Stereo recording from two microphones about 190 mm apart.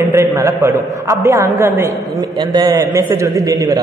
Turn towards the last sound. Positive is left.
turn(degrees=-20)  # may be behind; listen again after turning